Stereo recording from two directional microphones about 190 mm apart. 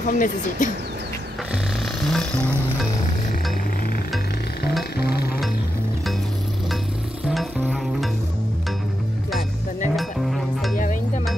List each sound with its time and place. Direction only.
0.0 s speech: 45° left (ahead or behind)
2.0 s music: 5° left (ahead or behind)
4.9 s music: 55° left (ahead or behind)
7.2 s music: centre (ahead or behind)
9.9 s music: centre (ahead or behind)